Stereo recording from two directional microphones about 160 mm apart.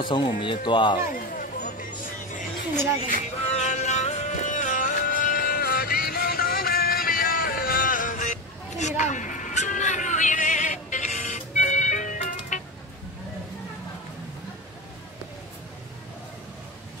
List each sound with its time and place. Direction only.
0.1 s speech: 30° left (ahead or behind)
0.9 s chatter: 60° left (ahead or behind)
2.7 s speech: 15° right (ahead or behind)
3.1 s music: 45° left (ahead or behind)